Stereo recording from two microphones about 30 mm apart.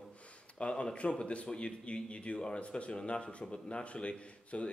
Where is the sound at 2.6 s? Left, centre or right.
Left.